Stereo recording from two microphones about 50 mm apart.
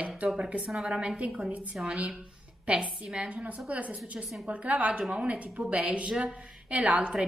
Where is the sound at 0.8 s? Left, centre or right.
Centre.